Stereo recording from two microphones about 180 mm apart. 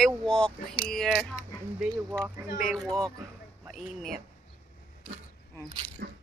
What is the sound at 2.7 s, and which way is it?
Speech, centre (ahead or behind).